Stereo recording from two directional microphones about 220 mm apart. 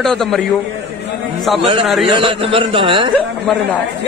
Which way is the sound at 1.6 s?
25° right (ahead or behind).